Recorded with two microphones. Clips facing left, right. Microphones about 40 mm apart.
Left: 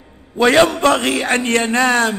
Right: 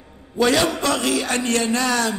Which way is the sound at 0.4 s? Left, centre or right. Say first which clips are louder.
Left 6 dB; left.